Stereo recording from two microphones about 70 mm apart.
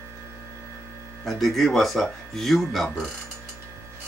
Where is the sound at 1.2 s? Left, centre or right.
Centre.